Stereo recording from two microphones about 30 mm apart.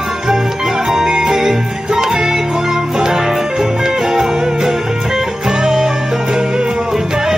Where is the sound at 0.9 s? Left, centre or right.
Right.